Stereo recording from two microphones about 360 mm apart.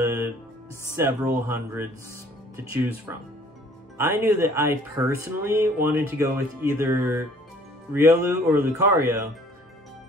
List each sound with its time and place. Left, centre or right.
0.0 s music: centre
0.9 s speech: centre